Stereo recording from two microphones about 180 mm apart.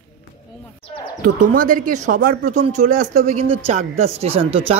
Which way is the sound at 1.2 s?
50° right (ahead or behind).